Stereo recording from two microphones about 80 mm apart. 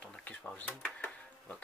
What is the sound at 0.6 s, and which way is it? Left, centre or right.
Cash register, left.